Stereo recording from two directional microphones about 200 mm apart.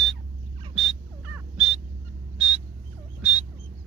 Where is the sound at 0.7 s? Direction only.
Centre (ahead or behind).